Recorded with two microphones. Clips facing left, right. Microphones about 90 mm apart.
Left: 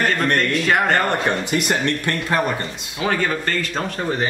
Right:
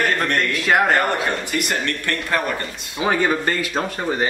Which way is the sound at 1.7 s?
20° left (ahead or behind).